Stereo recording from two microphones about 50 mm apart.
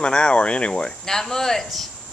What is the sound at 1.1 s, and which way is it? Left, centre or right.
Speech, centre.